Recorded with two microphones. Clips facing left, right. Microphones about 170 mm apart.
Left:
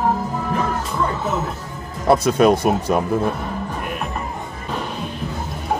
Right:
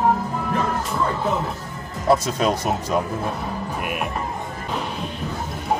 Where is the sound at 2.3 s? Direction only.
60° left (ahead or behind).